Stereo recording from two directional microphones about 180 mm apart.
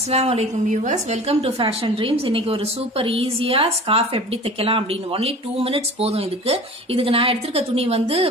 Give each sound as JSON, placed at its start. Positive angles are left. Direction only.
{"t": 0.1, "sound": "a woman's voice", "side_deg": -35}